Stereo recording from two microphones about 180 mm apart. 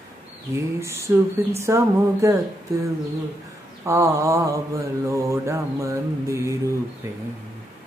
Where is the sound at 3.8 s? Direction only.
15° right (ahead or behind).